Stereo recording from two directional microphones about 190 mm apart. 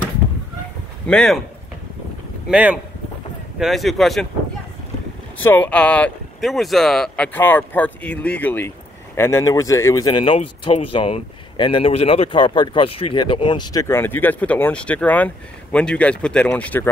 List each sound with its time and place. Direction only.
1.0 s speech: 5° left (ahead or behind)
2.5 s speech: 5° right (ahead or behind)
5.4 s speech: 10° left (ahead or behind)